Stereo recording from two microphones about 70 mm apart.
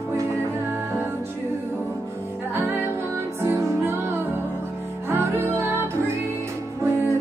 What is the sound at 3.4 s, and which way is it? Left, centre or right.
Music, right.